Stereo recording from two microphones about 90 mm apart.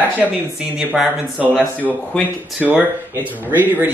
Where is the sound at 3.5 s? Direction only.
20° right (ahead or behind).